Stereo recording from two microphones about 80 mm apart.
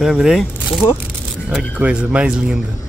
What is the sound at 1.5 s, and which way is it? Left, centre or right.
Speech, centre.